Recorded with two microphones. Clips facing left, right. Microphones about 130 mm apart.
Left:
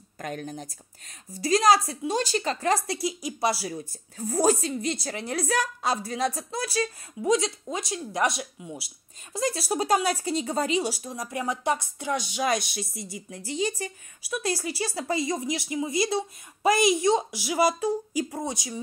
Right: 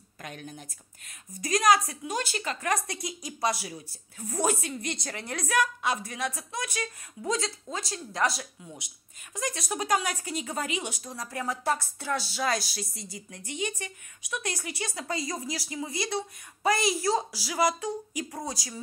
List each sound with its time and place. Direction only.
0.2 s a woman's voice: 45° left (ahead or behind)
5.0 s a woman's voice: 25° left (ahead or behind)
7.7 s a woman's voice: 20° left (ahead or behind)